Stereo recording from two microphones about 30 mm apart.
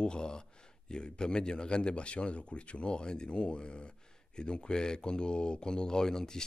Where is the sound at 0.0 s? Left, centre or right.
Left.